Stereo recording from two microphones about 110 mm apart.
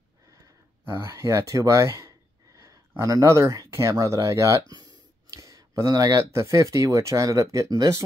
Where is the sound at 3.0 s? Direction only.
30° right (ahead or behind).